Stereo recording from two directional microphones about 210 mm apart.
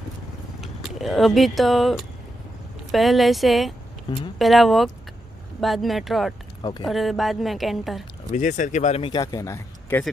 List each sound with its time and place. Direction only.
0.6 s speech: centre (ahead or behind)
6.6 s speech: 20° left (ahead or behind)
6.9 s speech: centre (ahead or behind)
8.3 s speech: 40° left (ahead or behind); by 10.1 s 10° left (ahead or behind)